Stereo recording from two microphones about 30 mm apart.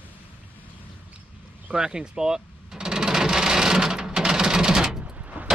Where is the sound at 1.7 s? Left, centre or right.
Right.